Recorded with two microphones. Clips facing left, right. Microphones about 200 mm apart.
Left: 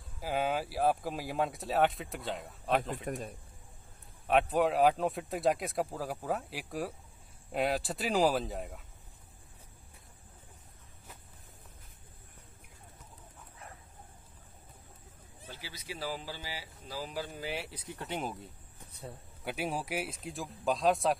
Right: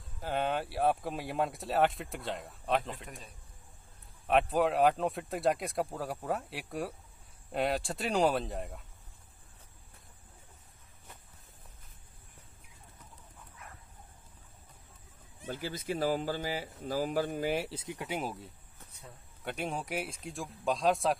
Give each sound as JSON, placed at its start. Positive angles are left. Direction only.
{"t": 0.2, "sound": "speech", "side_deg": 5}
{"t": 4.3, "sound": "speech", "side_deg": 0}
{"t": 15.4, "sound": "speech", "side_deg": -50}
{"t": 17.6, "sound": "speech", "side_deg": -25}
{"t": 17.9, "sound": "speech", "side_deg": -10}